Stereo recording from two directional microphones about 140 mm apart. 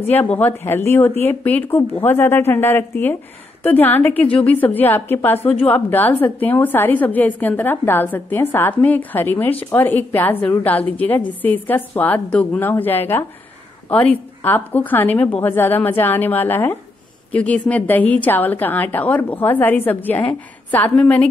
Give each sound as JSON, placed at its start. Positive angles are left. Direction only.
{"t": 0.0, "sound": "a woman's voice", "side_deg": 10}
{"t": 4.3, "sound": "a woman's voice", "side_deg": 40}
{"t": 4.7, "sound": "a woman's voice", "side_deg": 15}